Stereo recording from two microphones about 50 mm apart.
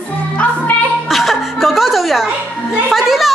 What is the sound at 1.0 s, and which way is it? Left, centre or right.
Music, centre.